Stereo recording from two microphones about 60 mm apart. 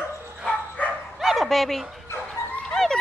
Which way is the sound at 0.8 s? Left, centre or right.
Left.